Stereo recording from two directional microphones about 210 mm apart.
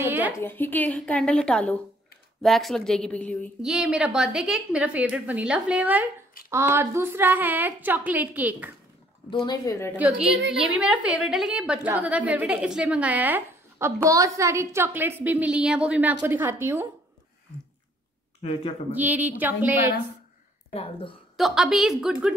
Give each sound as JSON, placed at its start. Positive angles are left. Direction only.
{"t": 0.0, "sound": "a sound", "side_deg": -10}
{"t": 0.4, "sound": "a woman's voice", "side_deg": 10}
{"t": 3.7, "sound": "a woman's voice", "side_deg": -5}
{"t": 9.3, "sound": "speech", "side_deg": 20}
{"t": 9.9, "sound": "a woman's voice", "side_deg": -5}
{"t": 18.4, "sound": "speech", "side_deg": 25}
{"t": 18.9, "sound": "a woman's voice", "side_deg": -10}
{"t": 20.7, "sound": "speech", "side_deg": 25}
{"t": 21.4, "sound": "a woman's voice", "side_deg": 0}